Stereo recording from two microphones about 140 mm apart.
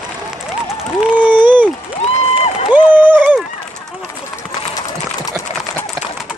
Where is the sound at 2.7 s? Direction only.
15° right (ahead or behind).